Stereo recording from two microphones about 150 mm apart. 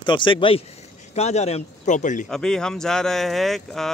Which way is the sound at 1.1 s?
45° left (ahead or behind).